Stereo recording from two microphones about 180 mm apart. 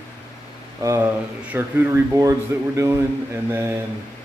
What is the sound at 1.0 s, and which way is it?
Speech, 10° right (ahead or behind).